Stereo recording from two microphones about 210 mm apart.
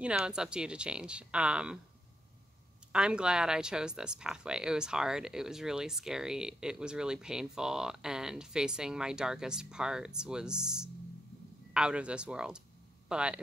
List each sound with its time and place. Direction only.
0.0 s speech: 5° right (ahead or behind)
2.9 s speech: 5° right (ahead or behind)